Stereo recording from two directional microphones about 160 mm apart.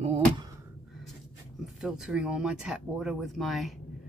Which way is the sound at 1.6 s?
5° right (ahead or behind).